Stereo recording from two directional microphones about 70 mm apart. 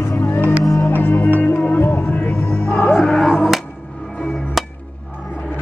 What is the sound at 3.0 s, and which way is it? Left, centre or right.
Music, centre.